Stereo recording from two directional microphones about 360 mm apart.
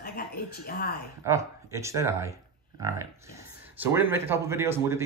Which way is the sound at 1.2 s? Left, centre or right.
Centre.